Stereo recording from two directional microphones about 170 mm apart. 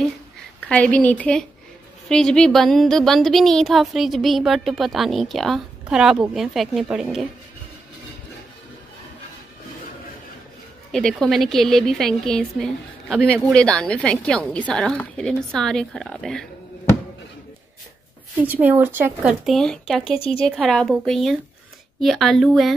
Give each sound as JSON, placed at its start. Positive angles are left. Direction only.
{"t": 0.7, "sound": "a woman's voice", "side_deg": 10}
{"t": 10.9, "sound": "a woman's voice", "side_deg": 5}
{"t": 18.4, "sound": "a woman's voice", "side_deg": -10}